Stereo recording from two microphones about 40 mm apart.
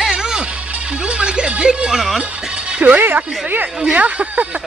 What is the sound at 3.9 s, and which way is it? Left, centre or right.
Speech, right.